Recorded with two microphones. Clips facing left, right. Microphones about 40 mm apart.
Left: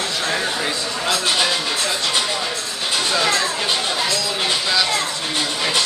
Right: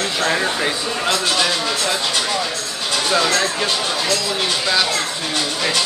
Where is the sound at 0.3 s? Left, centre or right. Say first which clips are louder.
Right 2 dB; centre.